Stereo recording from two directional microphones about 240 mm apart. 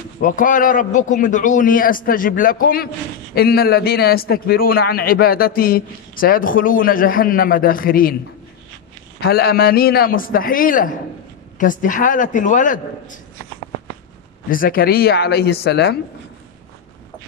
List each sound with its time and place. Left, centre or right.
0.2 s a man's voice: left
9.2 s a man's voice: left
14.5 s a man's voice: left